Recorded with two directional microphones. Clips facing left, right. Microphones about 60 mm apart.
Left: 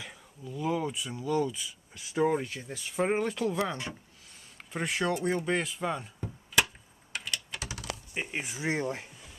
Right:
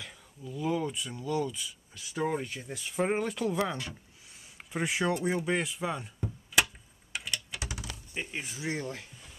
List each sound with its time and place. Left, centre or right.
0.0 s speech: centre
4.7 s speech: centre
7.5 s typing: centre
8.1 s speech: centre